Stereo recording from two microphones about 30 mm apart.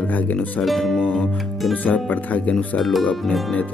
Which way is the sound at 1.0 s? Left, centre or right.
Left.